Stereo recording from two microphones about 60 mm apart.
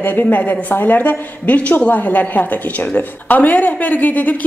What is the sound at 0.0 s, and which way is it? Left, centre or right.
A woman's voice, left.